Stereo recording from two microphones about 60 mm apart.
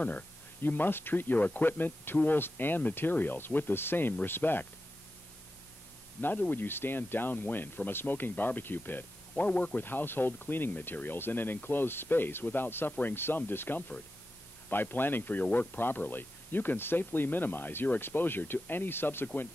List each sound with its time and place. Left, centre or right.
0.0 s speech: left
6.2 s speech: left
9.4 s speech: left